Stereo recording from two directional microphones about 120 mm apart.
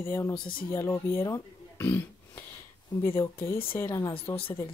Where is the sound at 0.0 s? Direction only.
20° left (ahead or behind).